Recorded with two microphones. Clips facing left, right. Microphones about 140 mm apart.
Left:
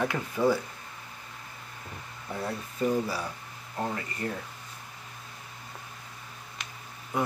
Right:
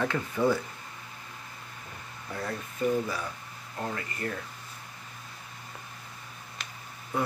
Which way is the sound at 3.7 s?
25° left (ahead or behind).